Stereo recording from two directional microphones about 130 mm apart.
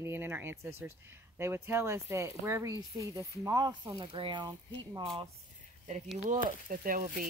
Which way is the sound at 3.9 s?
40° right (ahead or behind).